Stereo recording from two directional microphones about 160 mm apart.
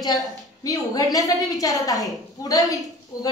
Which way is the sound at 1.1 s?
20° left (ahead or behind).